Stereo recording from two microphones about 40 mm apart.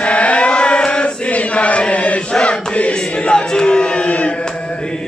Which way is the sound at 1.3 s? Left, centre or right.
Left.